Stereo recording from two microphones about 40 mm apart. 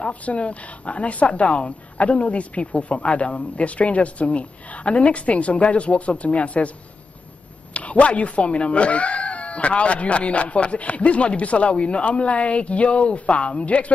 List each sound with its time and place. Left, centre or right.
0.0 s speech: left
7.7 s speech: left